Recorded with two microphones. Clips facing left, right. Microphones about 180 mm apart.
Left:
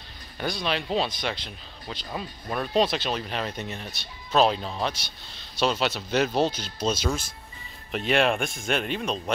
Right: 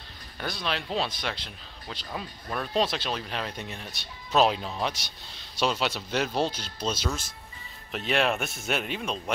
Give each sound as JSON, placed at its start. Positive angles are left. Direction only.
{"t": 0.4, "sound": "speech", "side_deg": 0}
{"t": 6.6, "sound": "speech", "side_deg": 45}
{"t": 7.9, "sound": "speech", "side_deg": 0}